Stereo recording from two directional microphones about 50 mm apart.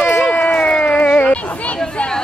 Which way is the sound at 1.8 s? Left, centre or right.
Centre.